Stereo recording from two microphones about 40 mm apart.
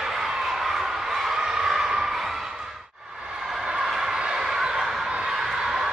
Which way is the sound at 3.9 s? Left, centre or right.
Centre.